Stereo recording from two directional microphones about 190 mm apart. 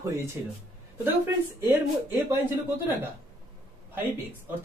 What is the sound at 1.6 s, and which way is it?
Speech, 15° right (ahead or behind).